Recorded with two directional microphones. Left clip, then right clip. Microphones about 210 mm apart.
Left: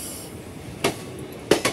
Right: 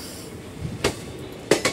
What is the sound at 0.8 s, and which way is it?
Train, 50° left (ahead or behind).